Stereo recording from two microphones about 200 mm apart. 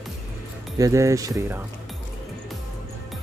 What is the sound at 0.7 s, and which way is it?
Speech, 15° right (ahead or behind).